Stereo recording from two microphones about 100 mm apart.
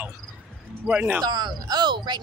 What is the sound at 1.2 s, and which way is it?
Speech, 45° right (ahead or behind).